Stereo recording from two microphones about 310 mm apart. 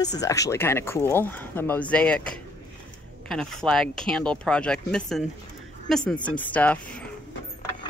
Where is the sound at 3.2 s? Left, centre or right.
Centre.